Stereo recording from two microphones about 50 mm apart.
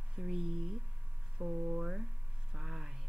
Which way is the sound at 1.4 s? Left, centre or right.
Right.